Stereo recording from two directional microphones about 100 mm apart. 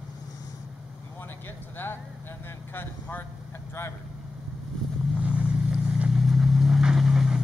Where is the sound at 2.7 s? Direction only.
20° left (ahead or behind).